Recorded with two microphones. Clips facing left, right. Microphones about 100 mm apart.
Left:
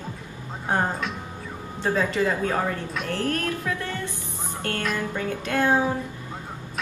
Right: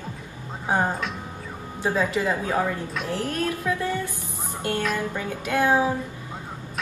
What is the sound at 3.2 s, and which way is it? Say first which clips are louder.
Speech: left 1 dB; 15° right (ahead or behind).